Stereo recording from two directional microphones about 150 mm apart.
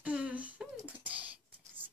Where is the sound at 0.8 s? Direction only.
10° right (ahead or behind).